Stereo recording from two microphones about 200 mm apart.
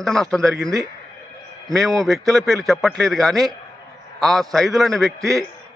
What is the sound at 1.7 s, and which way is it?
A man's voice, centre (ahead or behind).